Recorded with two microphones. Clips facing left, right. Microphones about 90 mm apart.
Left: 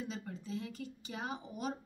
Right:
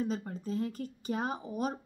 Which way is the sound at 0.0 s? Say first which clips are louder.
Right 8 dB; 40° right (ahead or behind).